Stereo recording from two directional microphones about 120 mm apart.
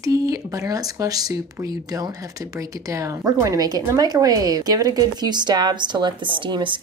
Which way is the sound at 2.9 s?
25° right (ahead or behind).